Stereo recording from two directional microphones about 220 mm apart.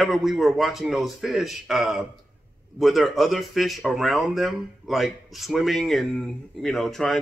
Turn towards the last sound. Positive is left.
turn(degrees=0)  # may be behind; listen again after turning